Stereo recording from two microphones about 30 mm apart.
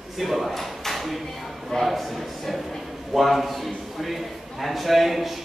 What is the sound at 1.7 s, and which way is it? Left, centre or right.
A man's voice, centre.